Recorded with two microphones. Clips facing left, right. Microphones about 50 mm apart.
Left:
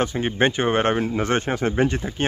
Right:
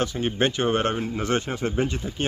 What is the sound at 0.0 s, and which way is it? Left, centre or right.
Speech, left.